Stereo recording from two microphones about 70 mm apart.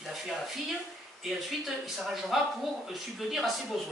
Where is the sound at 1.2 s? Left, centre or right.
Centre.